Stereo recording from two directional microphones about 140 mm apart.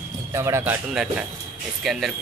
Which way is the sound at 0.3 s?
20° right (ahead or behind).